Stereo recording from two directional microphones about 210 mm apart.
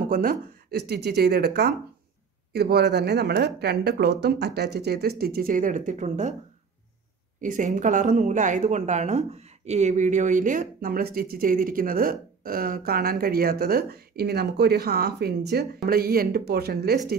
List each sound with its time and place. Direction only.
0.1 s speech: 45° right (ahead or behind)
7.4 s speech: 40° right (ahead or behind)